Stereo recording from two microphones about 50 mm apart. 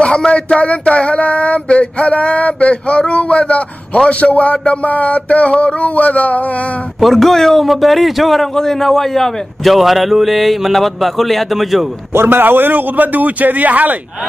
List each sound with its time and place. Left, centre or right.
0.3 s a sound: left
7.0 s a man's voice: centre
12.1 s a man's voice: right